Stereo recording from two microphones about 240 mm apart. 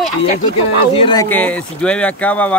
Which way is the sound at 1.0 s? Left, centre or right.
Centre.